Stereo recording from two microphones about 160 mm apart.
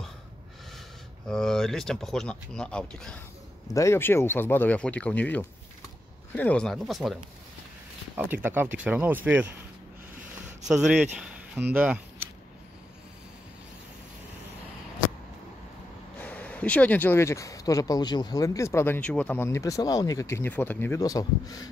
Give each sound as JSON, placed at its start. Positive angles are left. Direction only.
{"t": 1.2, "sound": "speech", "side_deg": 5}
{"t": 3.6, "sound": "speech", "side_deg": 20}
{"t": 8.3, "sound": "speech", "side_deg": -10}
{"t": 10.7, "sound": "speech", "side_deg": -5}
{"t": 11.1, "sound": "a sound", "side_deg": -5}
{"t": 11.7, "sound": "speech", "side_deg": -10}
{"t": 16.2, "sound": "speech", "side_deg": 10}